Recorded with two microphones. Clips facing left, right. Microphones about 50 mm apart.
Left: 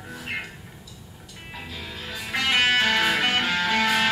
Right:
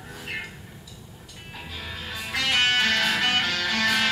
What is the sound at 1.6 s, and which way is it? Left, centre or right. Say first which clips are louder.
Music: right 1 dB; centre.